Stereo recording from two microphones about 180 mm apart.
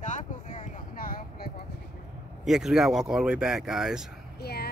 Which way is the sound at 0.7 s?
50° left (ahead or behind).